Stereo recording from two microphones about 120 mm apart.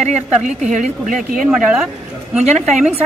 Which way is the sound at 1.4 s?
5° right (ahead or behind).